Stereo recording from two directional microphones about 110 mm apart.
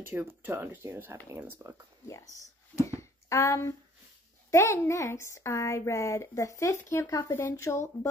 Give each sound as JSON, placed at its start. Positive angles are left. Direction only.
{"t": 0.0, "sound": "speech", "side_deg": -20}
{"t": 2.0, "sound": "speech", "side_deg": 30}
{"t": 2.9, "sound": "a sound", "side_deg": 25}
{"t": 4.5, "sound": "speech", "side_deg": 25}